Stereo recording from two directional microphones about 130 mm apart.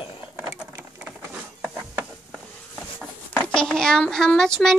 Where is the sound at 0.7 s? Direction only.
20° right (ahead or behind).